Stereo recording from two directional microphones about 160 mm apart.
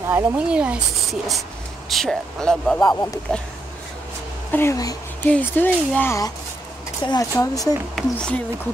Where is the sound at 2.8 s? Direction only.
25° left (ahead or behind).